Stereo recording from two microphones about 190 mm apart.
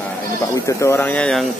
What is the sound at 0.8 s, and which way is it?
Speech, 10° left (ahead or behind).